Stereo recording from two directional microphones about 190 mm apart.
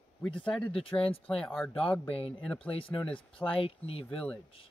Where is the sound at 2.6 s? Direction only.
30° left (ahead or behind).